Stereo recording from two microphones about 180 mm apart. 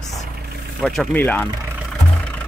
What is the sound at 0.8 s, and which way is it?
Speech, 5° left (ahead or behind).